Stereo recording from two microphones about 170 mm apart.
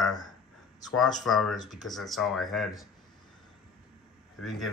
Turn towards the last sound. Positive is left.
turn(degrees=0)  # may be behind; listen again after turning